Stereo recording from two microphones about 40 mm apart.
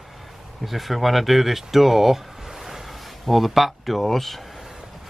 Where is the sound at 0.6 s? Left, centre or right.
Centre.